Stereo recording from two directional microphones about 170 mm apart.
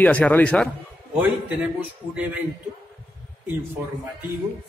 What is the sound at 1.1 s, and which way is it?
Speech, 5° right (ahead or behind).